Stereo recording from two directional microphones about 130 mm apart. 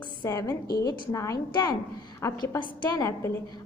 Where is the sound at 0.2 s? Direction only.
25° left (ahead or behind).